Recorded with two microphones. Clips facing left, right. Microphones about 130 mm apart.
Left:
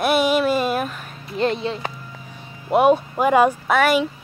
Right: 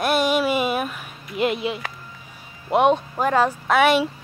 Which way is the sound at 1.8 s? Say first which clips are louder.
Left 4 dB; 25° left (ahead or behind).